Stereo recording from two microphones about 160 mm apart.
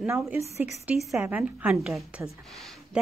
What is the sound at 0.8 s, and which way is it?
Speech, centre (ahead or behind).